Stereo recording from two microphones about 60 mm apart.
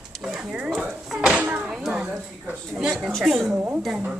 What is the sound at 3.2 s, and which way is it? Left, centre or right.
Speech, centre.